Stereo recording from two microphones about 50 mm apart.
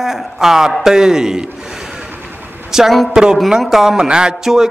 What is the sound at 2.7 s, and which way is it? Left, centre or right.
A man's voice, centre.